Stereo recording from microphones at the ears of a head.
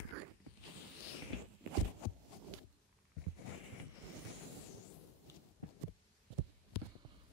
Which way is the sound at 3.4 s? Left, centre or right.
Left.